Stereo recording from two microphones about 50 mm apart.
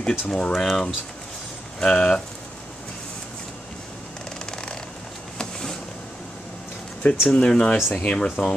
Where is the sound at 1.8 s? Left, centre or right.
Centre.